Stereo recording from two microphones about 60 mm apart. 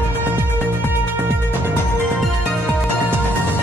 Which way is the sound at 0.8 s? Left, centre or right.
Right.